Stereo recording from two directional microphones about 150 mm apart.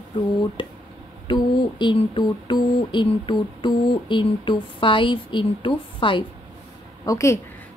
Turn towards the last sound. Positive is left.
turn(degrees=20)  # may be behind; listen again after turning